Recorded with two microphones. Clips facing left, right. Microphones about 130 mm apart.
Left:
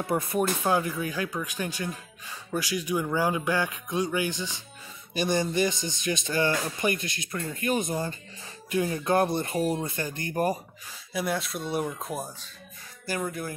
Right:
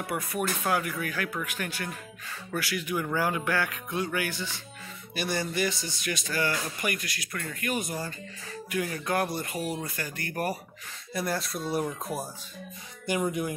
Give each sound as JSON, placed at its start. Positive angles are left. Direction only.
{"t": 0.0, "sound": "speech", "side_deg": 25}
{"t": 11.1, "sound": "speech", "side_deg": 0}
{"t": 13.0, "sound": "speech", "side_deg": -20}